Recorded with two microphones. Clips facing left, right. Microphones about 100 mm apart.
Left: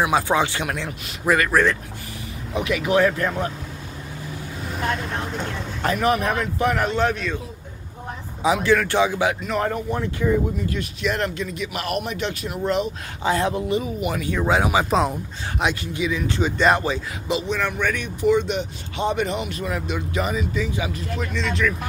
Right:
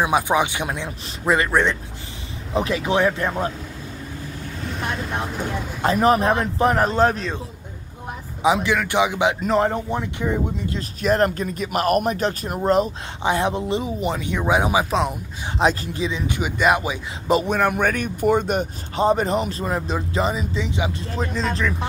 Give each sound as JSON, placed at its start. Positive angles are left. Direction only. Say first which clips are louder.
{"t": 0.0, "sound": "a man's voice", "louder": "right 1 dB", "side_deg": -15}
{"t": 2.5, "sound": "a man's voice", "louder": "even", "side_deg": -30}
{"t": 5.9, "sound": "speech", "louder": "right 4 dB", "side_deg": -35}
{"t": 8.4, "sound": "a man's voice", "louder": "even", "side_deg": -20}
{"t": 10.8, "sound": "speech", "louder": "right 8 dB", "side_deg": -40}
{"t": 13.2, "sound": "a man's voice", "louder": "even", "side_deg": -20}
{"t": 14.9, "sound": "speech", "louder": "left 1 dB", "side_deg": 0}
{"t": 15.6, "sound": "speech", "louder": "right 4 dB", "side_deg": -35}
{"t": 16.1, "sound": "a man's voice", "louder": "left 1 dB", "side_deg": -25}
{"t": 16.3, "sound": "speech", "louder": "left 1 dB", "side_deg": -10}
{"t": 17.3, "sound": "speech", "louder": "right 5 dB", "side_deg": -50}